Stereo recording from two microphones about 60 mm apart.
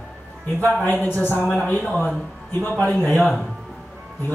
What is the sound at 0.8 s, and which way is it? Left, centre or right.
Speech, left.